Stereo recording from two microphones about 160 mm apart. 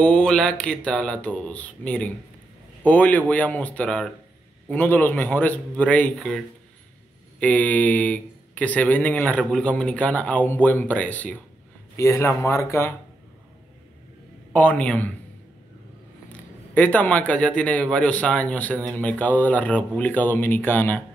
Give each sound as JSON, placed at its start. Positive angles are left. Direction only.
{"t": 0.0, "sound": "a man's voice", "side_deg": 5}
{"t": 14.5, "sound": "a man's voice", "side_deg": 10}
{"t": 16.3, "sound": "a man's voice", "side_deg": 10}